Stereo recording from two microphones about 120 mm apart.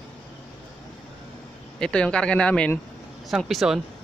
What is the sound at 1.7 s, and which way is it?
Speech, 5° left (ahead or behind).